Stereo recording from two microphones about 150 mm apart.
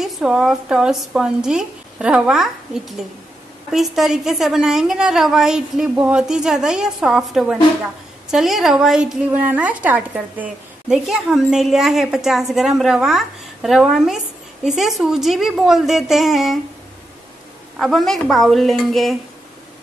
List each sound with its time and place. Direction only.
0.0 s a woman's voice: 5° right (ahead or behind)
17.7 s a woman's voice: centre (ahead or behind)